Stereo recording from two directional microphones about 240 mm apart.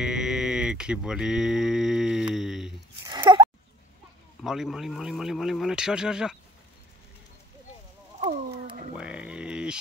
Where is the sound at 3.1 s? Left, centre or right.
Centre.